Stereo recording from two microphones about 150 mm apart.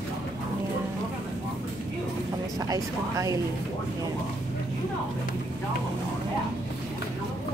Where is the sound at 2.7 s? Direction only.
20° right (ahead or behind).